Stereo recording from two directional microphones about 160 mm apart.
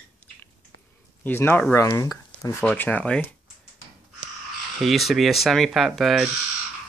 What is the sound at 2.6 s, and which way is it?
Speech, 10° left (ahead or behind).